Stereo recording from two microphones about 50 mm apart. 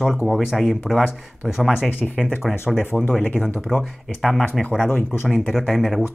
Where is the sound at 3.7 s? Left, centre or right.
Centre.